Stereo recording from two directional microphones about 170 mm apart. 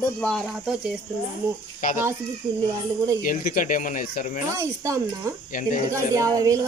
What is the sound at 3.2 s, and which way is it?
Speech, 50° left (ahead or behind).